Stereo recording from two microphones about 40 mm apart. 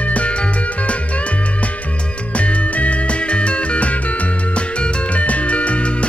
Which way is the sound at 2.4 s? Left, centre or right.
Left.